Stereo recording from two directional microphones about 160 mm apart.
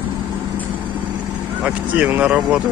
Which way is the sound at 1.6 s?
10° right (ahead or behind).